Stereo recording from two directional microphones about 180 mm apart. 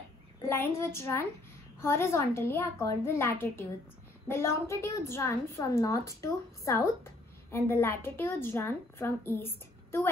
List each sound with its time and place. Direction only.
0.5 s a child's voice: 15° left (ahead or behind)